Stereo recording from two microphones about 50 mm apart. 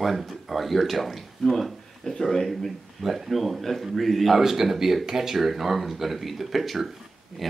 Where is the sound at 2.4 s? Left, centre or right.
Centre.